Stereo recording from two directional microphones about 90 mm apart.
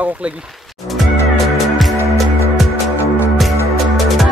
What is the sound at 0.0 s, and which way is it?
Speech, 15° right (ahead or behind).